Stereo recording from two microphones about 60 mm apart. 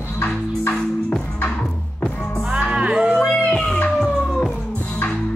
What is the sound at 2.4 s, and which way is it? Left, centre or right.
Music, centre.